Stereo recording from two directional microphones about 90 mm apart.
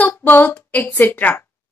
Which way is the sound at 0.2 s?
20° left (ahead or behind).